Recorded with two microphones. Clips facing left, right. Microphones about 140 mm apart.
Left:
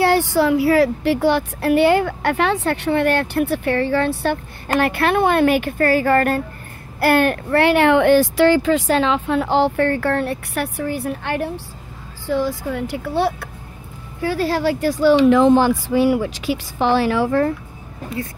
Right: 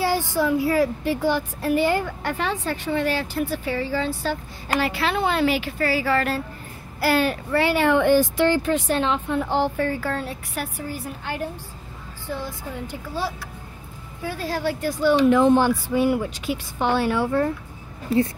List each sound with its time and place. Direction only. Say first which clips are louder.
0.0 s speech: left 6 dB; 70° left (ahead or behind)
12.3 s speech: left 10 dB; 90° left; by 13.5 s 65° left (ahead or behind)
14.2 s speech: left 7 dB; 90° left